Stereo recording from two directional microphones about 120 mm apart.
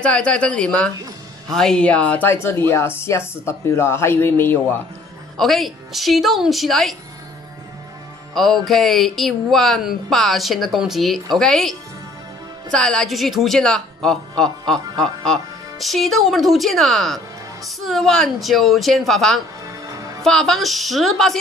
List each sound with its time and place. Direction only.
0.0 s speech: 10° left (ahead or behind)
5.4 s speech: centre (ahead or behind)
8.6 s speech: centre (ahead or behind)
12.7 s speech: 5° left (ahead or behind)
19.9 s music: 30° right (ahead or behind)
20.2 s speech: 5° left (ahead or behind)